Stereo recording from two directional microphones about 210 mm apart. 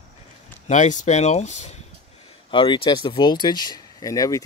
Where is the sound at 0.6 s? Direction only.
35° left (ahead or behind).